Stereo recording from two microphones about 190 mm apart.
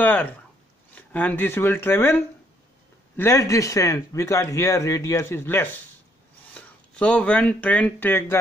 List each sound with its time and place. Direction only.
0.0 s speech: 10° left (ahead or behind)